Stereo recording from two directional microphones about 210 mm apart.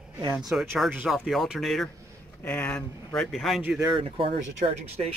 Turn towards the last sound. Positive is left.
turn(degrees=-30)  # may be behind; listen again after turning